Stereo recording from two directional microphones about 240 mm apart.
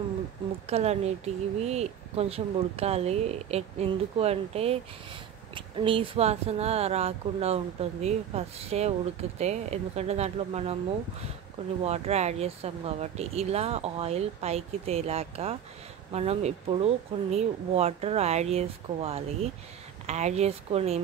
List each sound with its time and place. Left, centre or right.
0.7 s speech: right
11.8 s speech: right